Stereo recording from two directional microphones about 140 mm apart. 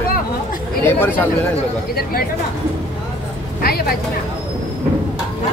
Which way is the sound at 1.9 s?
90° left.